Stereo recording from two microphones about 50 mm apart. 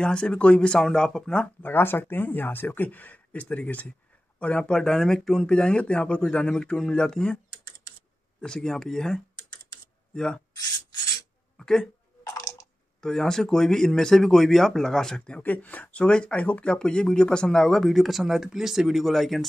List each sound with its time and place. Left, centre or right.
0.0 s speech: centre
1.6 s speech: left; by 7.3 s centre
8.4 s speech: centre
11.5 s a sound: centre
13.0 s speech: centre
15.4 s speech: left; by 19.4 s centre